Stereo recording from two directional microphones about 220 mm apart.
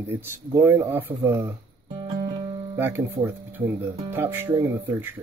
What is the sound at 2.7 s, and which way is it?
Speech, 10° right (ahead or behind).